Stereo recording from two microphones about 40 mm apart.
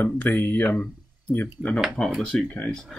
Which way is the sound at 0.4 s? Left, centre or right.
Left.